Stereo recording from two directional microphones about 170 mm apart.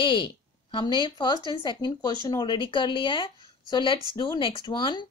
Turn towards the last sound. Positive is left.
turn(degrees=30)  # may be behind; listen again after turning